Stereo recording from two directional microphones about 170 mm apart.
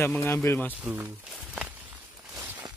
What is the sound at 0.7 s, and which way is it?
Walk, 10° right (ahead or behind).